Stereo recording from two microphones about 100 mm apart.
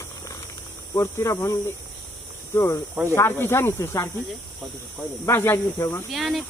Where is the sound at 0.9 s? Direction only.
30° left (ahead or behind).